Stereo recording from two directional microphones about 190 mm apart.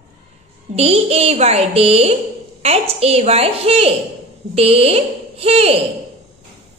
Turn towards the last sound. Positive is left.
turn(degrees=-30)  # may be behind; listen again after turning